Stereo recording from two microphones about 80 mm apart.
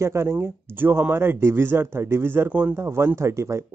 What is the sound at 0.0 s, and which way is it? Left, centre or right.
Speech, right.